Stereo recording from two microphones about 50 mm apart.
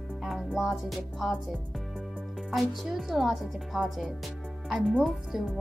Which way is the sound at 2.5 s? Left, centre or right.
Centre.